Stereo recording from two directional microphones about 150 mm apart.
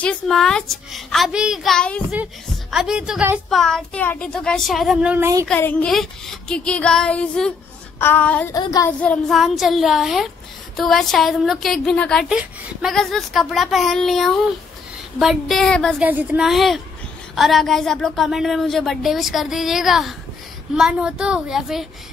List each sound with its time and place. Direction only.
0.0 s a woman's voice: 5° left (ahead or behind)
3.4 s a woman's voice: centre (ahead or behind)
5.1 s speech: 15° right (ahead or behind)
5.5 s a woman's voice: 10° left (ahead or behind)
9.4 s a woman's voice: centre (ahead or behind)
16.0 s a woman's voice: 10° right (ahead or behind)